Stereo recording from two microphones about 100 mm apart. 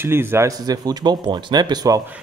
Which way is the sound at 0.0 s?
25° right (ahead or behind).